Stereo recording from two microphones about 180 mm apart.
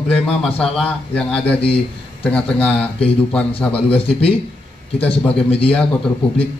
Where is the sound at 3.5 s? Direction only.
30° left (ahead or behind).